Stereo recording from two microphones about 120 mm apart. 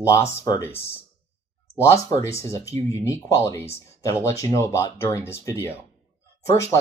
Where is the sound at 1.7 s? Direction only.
25° left (ahead or behind).